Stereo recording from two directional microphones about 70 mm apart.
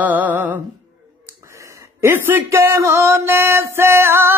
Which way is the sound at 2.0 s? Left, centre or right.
Right.